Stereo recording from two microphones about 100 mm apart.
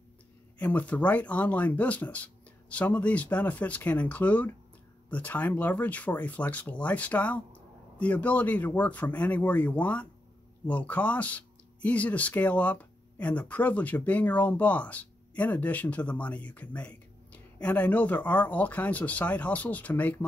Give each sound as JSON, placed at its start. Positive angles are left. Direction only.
{"t": 0.6, "sound": "speech", "side_deg": 15}